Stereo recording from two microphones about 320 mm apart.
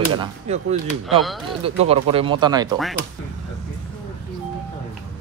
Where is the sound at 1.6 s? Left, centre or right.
Centre.